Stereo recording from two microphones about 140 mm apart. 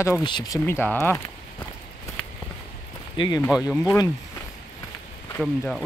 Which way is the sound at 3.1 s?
35° left (ahead or behind).